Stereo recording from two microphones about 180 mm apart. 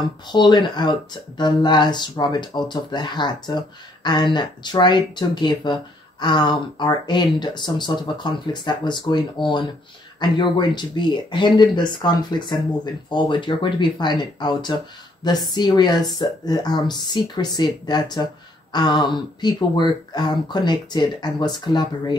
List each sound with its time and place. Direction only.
0.3 s speech: 25° left (ahead or behind)